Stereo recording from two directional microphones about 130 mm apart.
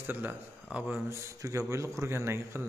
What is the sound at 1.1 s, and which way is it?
Speech, 20° right (ahead or behind).